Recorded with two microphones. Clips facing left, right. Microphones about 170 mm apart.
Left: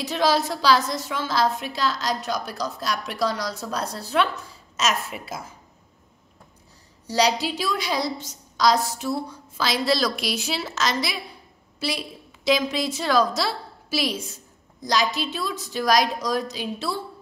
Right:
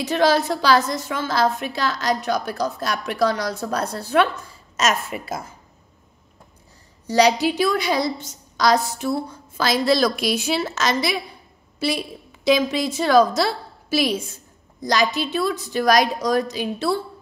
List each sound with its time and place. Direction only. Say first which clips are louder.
0.0 s a woman's voice: right 4 dB; 55° right (ahead or behind)
7.1 s a woman's voice: right 5 dB; 60° right (ahead or behind)
12.4 s a woman's voice: right 4 dB; 55° right (ahead or behind)